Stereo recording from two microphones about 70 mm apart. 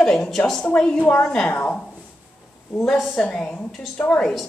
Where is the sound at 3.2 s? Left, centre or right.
Centre.